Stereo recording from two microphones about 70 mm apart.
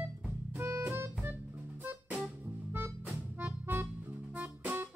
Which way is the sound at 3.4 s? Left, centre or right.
Right.